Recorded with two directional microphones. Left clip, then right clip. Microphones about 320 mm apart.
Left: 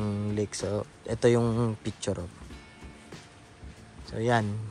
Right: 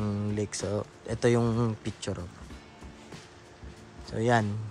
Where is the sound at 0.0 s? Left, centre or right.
Centre.